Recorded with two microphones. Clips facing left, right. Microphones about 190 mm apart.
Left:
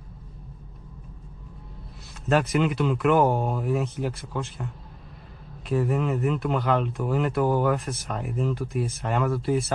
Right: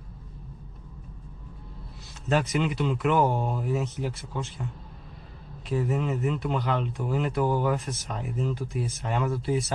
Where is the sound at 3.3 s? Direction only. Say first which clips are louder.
Left 3 dB; 5° left (ahead or behind).